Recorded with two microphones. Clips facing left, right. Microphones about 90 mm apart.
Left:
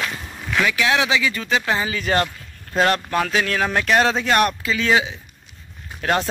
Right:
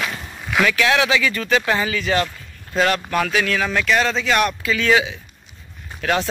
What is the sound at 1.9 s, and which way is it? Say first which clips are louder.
Speech: even; 40° left (ahead or behind).